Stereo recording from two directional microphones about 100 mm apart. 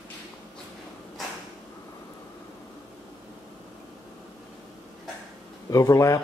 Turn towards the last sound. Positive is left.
turn(degrees=35)  # may be behind; listen again after turning